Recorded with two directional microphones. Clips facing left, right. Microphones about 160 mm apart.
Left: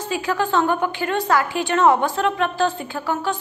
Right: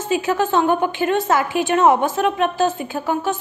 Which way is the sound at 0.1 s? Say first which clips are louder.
Right 3 dB; 20° right (ahead or behind).